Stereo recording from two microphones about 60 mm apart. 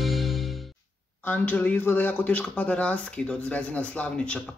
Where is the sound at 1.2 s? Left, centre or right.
Left.